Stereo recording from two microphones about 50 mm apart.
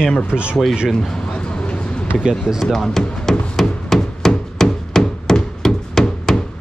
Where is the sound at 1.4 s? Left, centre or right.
Centre.